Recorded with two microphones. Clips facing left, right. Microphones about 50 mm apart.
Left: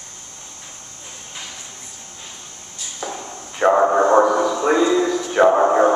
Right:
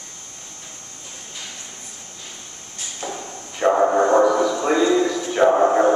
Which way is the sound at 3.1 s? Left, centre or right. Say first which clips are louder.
Left 1 dB; left.